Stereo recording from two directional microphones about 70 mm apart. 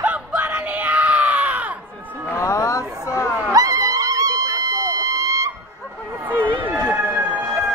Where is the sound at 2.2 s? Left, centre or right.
Left.